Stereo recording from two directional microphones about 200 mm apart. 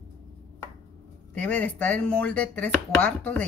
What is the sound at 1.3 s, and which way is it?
Speech, 5° left (ahead or behind).